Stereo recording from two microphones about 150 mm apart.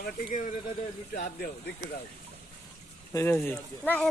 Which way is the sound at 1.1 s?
65° left (ahead or behind).